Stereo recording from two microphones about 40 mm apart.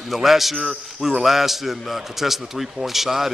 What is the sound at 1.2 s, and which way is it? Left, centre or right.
A man's voice, centre.